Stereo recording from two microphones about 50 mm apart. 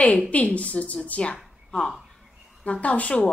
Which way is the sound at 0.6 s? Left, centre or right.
Left.